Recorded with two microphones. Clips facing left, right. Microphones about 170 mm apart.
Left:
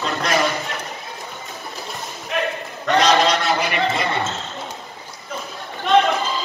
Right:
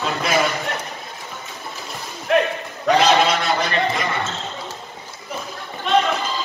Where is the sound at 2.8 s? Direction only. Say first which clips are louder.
Right 1 dB; 5° right (ahead or behind).